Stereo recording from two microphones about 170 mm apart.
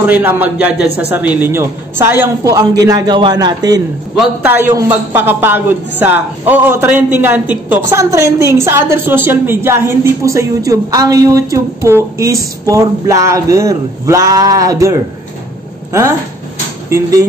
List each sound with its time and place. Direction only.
0.0 s a woman's voice: 10° right (ahead or behind)
4.5 s a woman's voice: 10° right (ahead or behind)